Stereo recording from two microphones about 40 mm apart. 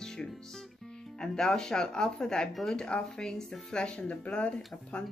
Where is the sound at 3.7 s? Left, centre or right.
Left.